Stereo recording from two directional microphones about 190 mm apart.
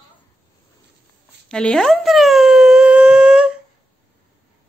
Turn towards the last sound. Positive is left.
turn(degrees=-5)  # may be behind; listen again after turning